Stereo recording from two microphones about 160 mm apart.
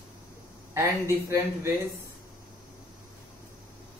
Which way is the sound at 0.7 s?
15° right (ahead or behind).